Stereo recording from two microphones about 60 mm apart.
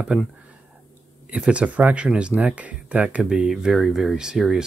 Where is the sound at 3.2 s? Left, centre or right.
Centre.